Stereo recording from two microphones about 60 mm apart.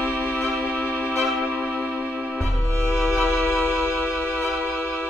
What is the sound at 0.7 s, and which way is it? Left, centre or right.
Music, left.